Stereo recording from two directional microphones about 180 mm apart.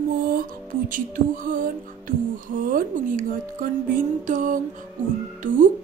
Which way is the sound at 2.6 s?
50° right (ahead or behind).